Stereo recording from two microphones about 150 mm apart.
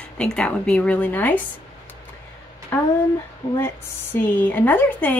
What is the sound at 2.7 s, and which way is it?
Speech, 15° left (ahead or behind).